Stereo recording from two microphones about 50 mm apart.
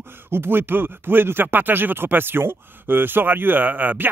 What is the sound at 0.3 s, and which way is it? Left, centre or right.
Speech, right.